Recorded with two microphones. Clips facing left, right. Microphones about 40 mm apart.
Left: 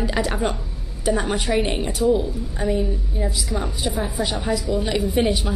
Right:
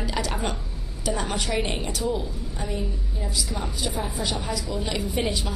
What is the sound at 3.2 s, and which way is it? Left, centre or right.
Speech, centre.